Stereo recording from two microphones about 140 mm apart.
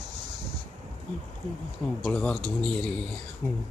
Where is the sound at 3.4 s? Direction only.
20° left (ahead or behind).